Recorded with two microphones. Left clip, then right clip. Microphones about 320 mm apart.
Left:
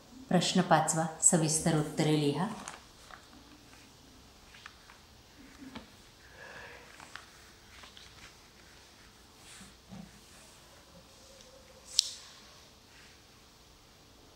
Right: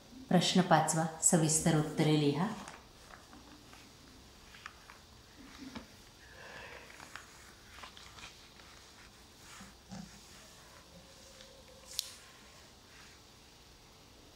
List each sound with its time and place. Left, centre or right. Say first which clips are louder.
0.3 s a woman's voice: left 1 dB; centre
12.0 s clicking: left 11 dB; centre